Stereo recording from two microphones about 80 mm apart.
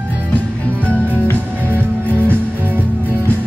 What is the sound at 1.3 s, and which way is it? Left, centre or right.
Music, right.